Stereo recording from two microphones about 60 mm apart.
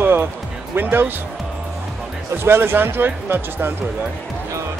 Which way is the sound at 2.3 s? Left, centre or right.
Right.